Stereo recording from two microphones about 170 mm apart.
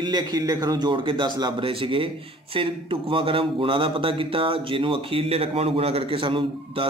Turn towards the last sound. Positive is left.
turn(degrees=-30)  # may be behind; listen again after turning